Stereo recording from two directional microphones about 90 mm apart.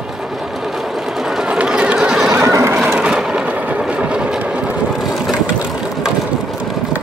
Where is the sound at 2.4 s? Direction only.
35° right (ahead or behind).